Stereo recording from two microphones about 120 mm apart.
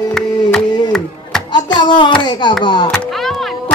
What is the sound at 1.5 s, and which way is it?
Music, 35° left (ahead or behind).